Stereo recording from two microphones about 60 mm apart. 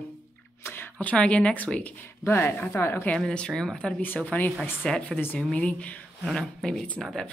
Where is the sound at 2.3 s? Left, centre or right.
Left.